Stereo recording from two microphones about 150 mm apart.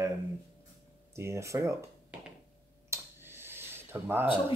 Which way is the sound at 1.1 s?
20° right (ahead or behind).